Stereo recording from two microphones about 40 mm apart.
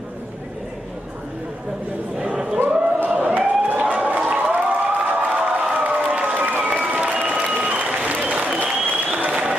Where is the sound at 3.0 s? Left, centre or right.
Right.